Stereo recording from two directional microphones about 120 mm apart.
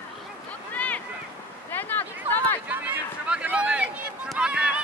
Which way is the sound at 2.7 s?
15° right (ahead or behind).